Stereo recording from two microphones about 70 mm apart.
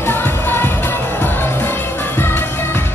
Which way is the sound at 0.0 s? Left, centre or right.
Left.